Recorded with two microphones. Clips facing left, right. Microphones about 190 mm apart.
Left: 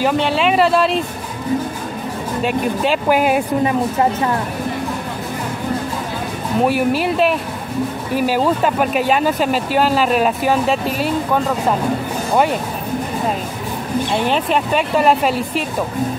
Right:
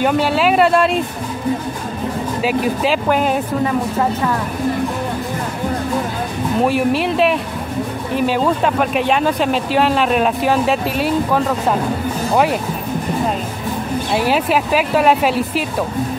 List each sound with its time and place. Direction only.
0.0 s speech: centre (ahead or behind)
2.4 s speech: centre (ahead or behind)
6.6 s speech: centre (ahead or behind)
14.1 s speech: 5° right (ahead or behind)